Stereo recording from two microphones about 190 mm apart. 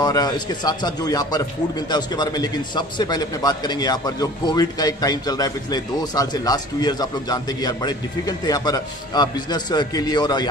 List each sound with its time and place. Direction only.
0.0 s a man's voice: 20° left (ahead or behind)